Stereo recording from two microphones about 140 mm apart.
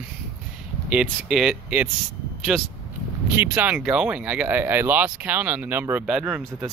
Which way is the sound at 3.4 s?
10° right (ahead or behind).